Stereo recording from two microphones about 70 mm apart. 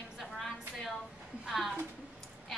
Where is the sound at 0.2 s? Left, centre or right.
Centre.